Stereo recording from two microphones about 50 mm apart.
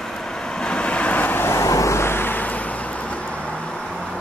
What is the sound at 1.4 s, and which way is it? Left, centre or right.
Vehicle, left.